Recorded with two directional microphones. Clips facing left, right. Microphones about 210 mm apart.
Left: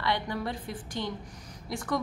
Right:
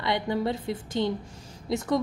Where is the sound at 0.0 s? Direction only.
20° right (ahead or behind).